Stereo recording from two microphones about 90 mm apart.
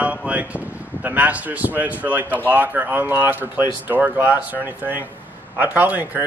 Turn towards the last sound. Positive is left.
turn(degrees=-20)  # may be behind; listen again after turning